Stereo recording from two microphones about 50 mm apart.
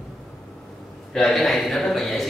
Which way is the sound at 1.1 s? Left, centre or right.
Centre.